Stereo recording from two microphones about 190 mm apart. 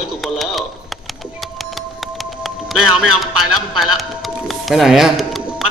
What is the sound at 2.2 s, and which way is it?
Speech, centre (ahead or behind).